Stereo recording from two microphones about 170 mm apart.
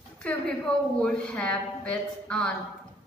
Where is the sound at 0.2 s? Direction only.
10° left (ahead or behind).